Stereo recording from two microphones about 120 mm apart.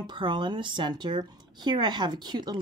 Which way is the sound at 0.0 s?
40° right (ahead or behind).